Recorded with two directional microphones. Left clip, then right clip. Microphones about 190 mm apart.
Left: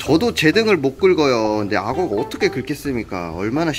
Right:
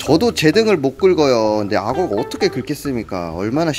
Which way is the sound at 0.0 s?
30° right (ahead or behind).